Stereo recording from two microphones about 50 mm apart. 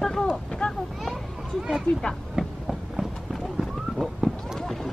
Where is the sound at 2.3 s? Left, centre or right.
Centre.